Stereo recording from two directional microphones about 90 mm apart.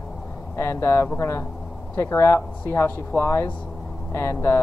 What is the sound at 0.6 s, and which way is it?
Speech, 30° left (ahead or behind).